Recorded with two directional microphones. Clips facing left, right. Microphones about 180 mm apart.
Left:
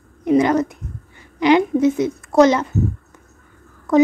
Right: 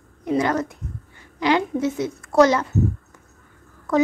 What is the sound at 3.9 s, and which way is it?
Speech, 20° left (ahead or behind).